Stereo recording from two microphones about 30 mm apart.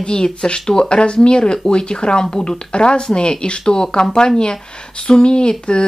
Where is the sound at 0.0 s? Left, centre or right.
Left.